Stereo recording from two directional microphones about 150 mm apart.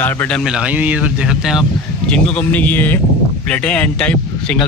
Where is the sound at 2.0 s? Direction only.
5° left (ahead or behind).